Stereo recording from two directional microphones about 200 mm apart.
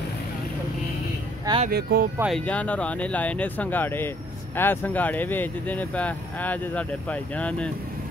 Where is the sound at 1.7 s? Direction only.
50° right (ahead or behind).